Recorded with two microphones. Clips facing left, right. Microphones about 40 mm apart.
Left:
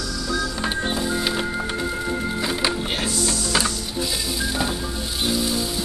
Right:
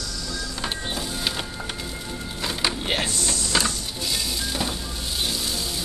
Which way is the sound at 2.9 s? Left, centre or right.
Centre.